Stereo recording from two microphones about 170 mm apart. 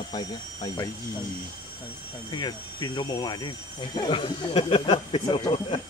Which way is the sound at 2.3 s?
25° left (ahead or behind).